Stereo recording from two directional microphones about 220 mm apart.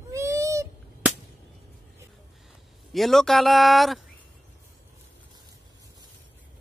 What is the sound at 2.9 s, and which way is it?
Speech, centre (ahead or behind).